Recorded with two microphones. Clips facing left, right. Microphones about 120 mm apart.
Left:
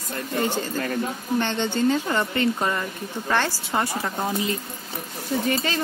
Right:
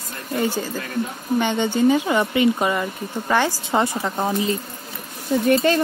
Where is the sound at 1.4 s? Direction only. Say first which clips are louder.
Right 5 dB; 10° right (ahead or behind).